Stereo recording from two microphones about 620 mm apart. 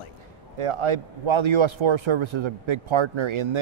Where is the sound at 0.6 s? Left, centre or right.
Right.